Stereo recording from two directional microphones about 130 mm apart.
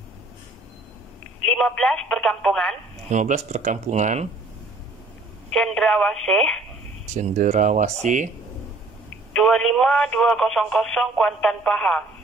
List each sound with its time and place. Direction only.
1.5 s speech: 5° left (ahead or behind)
3.1 s speech: 65° right (ahead or behind)
5.5 s speech: 5° left (ahead or behind)
7.2 s speech: 65° right (ahead or behind)
9.3 s speech: 5° left (ahead or behind)